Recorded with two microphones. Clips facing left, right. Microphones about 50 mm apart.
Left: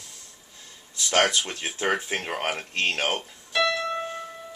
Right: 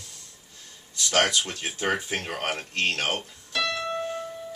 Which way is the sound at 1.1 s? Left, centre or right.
Centre.